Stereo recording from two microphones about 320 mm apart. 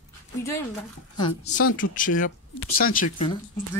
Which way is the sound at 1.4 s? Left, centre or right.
Left.